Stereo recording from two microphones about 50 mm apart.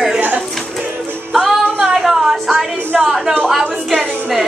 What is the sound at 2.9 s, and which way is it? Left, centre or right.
Speech, centre.